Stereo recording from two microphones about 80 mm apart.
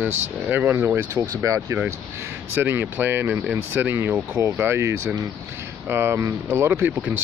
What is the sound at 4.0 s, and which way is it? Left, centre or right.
Speech, right.